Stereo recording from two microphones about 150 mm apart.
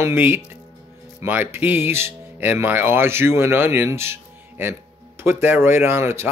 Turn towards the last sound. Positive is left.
turn(degrees=-15)  # may be behind; listen again after turning